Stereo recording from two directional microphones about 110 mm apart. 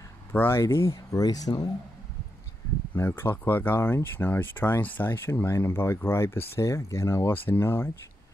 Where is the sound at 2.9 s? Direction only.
20° left (ahead or behind).